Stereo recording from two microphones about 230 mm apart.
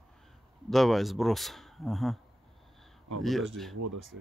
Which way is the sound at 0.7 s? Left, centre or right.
Centre.